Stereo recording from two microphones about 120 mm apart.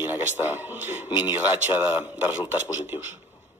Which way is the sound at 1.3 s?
15° right (ahead or behind).